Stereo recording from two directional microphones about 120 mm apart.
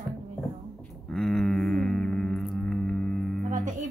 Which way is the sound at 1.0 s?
5° left (ahead or behind).